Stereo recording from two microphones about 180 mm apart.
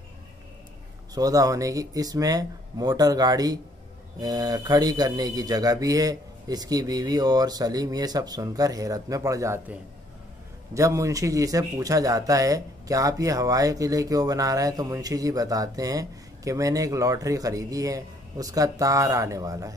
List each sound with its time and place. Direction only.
1.1 s speech: 20° right (ahead or behind)